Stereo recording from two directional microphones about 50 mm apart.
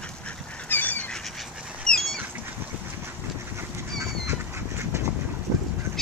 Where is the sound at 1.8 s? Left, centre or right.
Centre.